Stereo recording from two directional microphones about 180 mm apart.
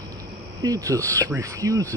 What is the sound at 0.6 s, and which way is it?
Speech, 20° right (ahead or behind).